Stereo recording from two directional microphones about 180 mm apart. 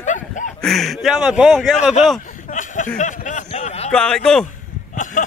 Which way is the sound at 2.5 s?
45° left (ahead or behind).